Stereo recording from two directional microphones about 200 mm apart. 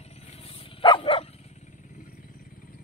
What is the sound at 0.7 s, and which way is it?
Dog, 25° left (ahead or behind).